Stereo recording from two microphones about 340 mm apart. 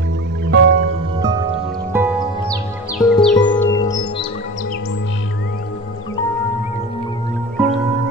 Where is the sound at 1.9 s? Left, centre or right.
Centre.